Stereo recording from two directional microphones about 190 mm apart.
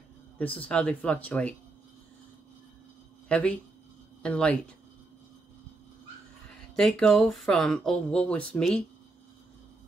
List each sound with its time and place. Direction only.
0.4 s speech: 5° left (ahead or behind)
3.3 s speech: 5° left (ahead or behind)
6.7 s speech: 5° left (ahead or behind)